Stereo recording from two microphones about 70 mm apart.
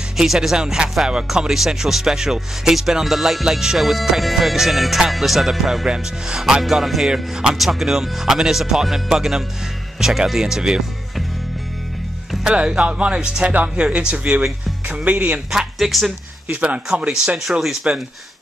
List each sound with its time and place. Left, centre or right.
0.2 s speech: centre
12.4 s speech: centre
15.5 s speech: centre
16.4 s speech: centre